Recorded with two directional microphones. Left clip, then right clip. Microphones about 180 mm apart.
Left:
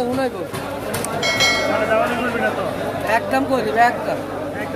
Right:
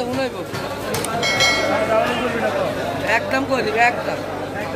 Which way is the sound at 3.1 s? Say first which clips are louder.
Left 1 dB; 25° left (ahead or behind).